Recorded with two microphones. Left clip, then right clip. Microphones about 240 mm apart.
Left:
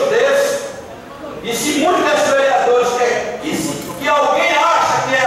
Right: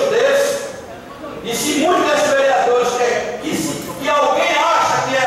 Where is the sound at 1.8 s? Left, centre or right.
Centre.